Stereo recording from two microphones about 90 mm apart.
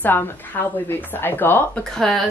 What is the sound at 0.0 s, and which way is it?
Speech, 20° left (ahead or behind).